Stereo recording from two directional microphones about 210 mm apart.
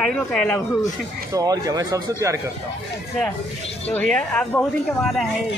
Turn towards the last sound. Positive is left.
turn(degrees=5)  # may be behind; listen again after turning